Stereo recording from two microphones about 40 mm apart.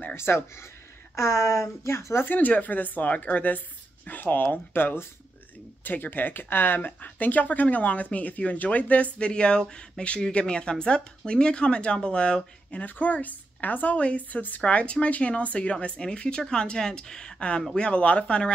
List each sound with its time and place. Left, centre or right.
0.1 s speech: left
2.2 s speech: left
9.3 s speech: left
12.8 s speech: left
13.9 s speech: left
14.6 s speech: left
17.4 s speech: left